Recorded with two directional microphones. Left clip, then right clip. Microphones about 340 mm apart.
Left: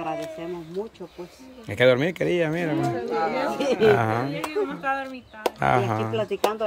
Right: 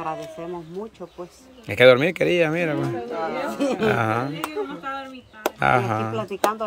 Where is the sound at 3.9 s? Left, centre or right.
Centre.